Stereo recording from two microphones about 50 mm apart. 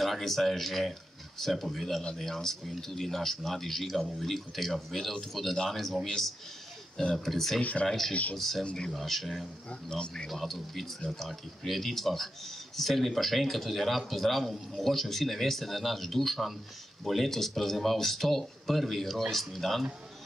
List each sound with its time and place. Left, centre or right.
0.0 s a man's voice: centre
7.0 s speech: centre
8.1 s speech: left
8.4 s a man's voice: centre
9.7 s speech: centre
10.3 s a man's voice: centre